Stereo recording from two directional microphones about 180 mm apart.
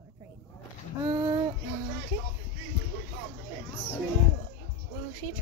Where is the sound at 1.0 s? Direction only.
15° right (ahead or behind).